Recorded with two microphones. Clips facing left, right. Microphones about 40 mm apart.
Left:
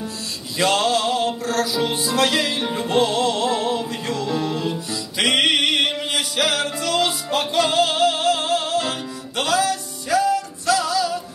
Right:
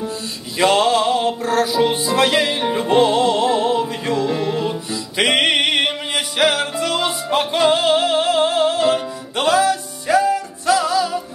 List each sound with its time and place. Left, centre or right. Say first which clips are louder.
0.6 s music: right 4 dB; right